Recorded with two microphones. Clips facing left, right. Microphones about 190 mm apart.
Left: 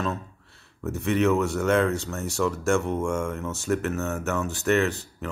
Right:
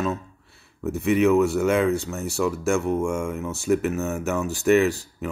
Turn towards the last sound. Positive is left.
turn(degrees=-10)  # may be behind; listen again after turning